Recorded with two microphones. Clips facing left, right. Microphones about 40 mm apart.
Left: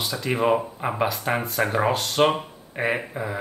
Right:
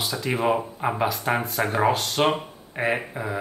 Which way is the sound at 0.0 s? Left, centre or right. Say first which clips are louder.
Left 1 dB; centre.